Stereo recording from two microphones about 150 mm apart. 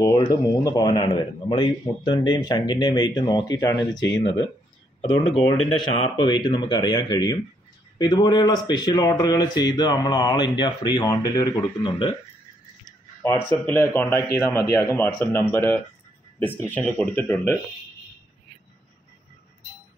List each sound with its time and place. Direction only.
0.0 s a man's voice: 25° left (ahead or behind)
5.8 s a man's voice: 35° left (ahead or behind)
13.2 s a man's voice: 15° left (ahead or behind)